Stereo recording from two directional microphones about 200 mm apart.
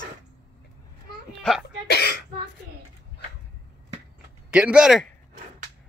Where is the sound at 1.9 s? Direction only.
55° left (ahead or behind).